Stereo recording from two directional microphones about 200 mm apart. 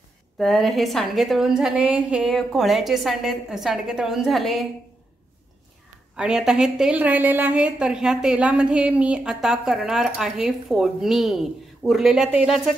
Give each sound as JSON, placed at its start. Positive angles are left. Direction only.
{"t": 0.4, "sound": "a woman's voice", "side_deg": 0}
{"t": 6.1, "sound": "a woman's voice", "side_deg": -5}